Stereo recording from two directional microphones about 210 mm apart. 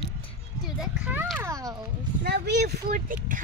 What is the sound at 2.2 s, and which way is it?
Speech, 50° right (ahead or behind).